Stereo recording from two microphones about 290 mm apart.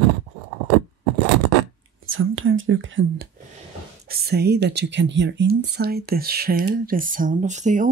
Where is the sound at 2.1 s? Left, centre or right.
Right.